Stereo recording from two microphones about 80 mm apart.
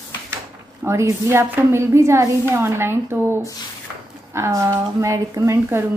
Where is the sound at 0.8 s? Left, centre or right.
Right.